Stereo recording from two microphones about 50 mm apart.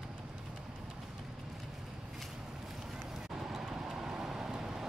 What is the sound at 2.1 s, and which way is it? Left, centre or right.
Vehicle, centre.